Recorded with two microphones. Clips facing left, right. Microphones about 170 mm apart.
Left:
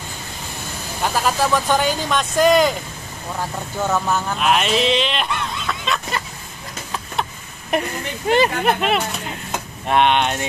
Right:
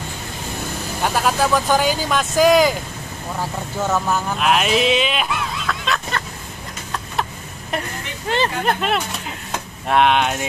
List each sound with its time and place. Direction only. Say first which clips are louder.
1.0 s speech: right 1 dB; centre (ahead or behind)
3.8 s speech: even; 5° right (ahead or behind)
7.7 s speech: left 5 dB; 15° left (ahead or behind); by 10.4 s 5° right (ahead or behind)